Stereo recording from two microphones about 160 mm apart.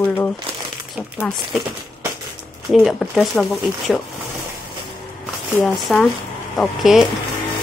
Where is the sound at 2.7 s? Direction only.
Centre (ahead or behind).